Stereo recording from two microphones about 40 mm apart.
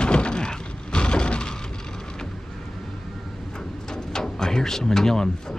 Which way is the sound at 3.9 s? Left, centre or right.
Centre.